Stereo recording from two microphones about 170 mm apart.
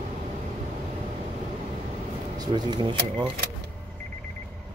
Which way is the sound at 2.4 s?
25° right (ahead or behind).